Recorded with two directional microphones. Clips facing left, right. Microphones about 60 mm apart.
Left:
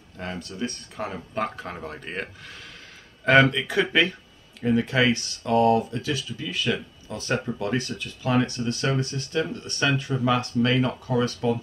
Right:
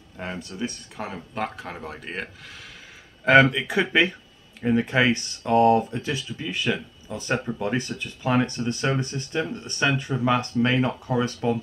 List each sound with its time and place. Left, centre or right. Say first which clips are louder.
0.2 s speech: even; centre
3.3 s speech: right 1 dB; centre